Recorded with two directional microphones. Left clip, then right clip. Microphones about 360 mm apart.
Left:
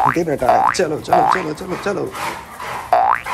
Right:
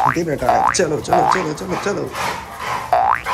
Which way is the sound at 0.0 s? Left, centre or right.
Centre.